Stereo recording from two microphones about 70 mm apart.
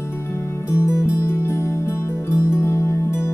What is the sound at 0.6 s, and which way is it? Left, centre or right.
Music, left.